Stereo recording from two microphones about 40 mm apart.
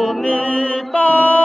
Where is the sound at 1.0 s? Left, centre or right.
Left.